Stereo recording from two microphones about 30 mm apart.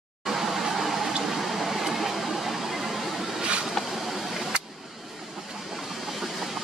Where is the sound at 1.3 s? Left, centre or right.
Centre.